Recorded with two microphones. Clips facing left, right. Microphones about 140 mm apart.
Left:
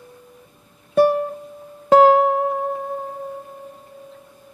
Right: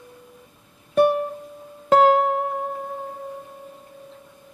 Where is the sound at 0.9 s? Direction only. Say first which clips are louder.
Left 2 dB; centre (ahead or behind).